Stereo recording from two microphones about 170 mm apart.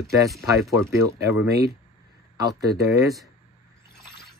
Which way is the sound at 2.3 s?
20° right (ahead or behind).